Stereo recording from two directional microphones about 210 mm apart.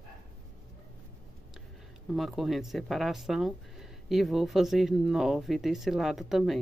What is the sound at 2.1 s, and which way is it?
Speech, centre (ahead or behind).